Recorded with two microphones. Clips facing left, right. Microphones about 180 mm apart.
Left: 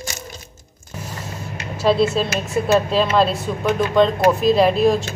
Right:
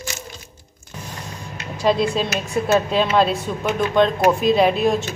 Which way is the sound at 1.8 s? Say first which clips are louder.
Left 2 dB; 5° left (ahead or behind).